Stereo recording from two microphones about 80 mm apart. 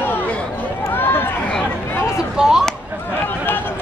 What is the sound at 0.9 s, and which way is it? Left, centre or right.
Run, left.